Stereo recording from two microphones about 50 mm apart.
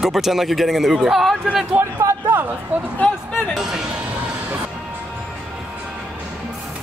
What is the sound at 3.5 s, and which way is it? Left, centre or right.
Speech, centre.